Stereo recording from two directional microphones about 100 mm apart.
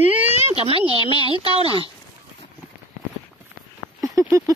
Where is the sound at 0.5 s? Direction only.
70° right (ahead or behind).